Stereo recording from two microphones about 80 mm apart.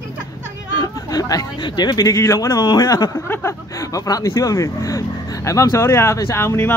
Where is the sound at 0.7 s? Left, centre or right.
Left.